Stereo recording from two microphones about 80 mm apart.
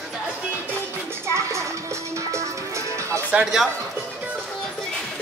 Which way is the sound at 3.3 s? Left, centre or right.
Centre.